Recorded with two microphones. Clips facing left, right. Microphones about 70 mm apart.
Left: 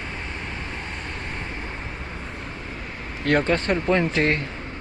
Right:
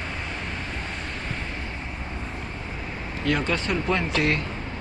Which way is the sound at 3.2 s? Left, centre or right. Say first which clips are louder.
Left 4 dB; left.